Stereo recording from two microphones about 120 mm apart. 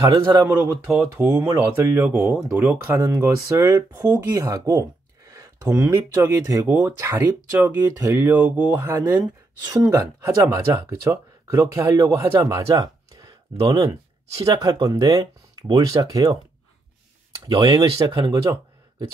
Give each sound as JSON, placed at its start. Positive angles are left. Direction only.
{"t": 0.0, "sound": "speech", "side_deg": -30}
{"t": 0.5, "sound": "speech", "side_deg": -15}
{"t": 1.4, "sound": "speech", "side_deg": -35}
{"t": 1.9, "sound": "speech", "side_deg": -20}
{"t": 4.7, "sound": "a sound", "side_deg": -25}
{"t": 5.8, "sound": "speech", "side_deg": -20}
{"t": 9.7, "sound": "speech", "side_deg": -30}
{"t": 12.7, "sound": "a sound", "side_deg": -35}
{"t": 14.6, "sound": "speech", "side_deg": -30}
{"t": 17.5, "sound": "speech", "side_deg": -40}